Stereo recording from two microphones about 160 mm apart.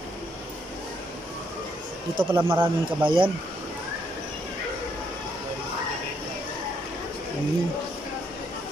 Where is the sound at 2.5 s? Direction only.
30° right (ahead or behind).